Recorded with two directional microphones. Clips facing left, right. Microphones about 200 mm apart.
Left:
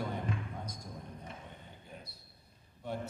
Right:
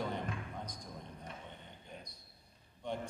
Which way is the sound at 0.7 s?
10° left (ahead or behind).